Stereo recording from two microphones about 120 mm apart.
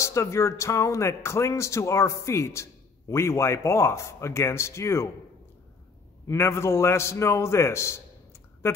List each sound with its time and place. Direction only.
0.0 s speech: 25° left (ahead or behind)
6.2 s a man's voice: 20° left (ahead or behind)